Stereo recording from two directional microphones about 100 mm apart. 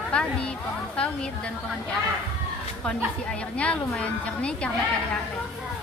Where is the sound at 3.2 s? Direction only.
10° left (ahead or behind).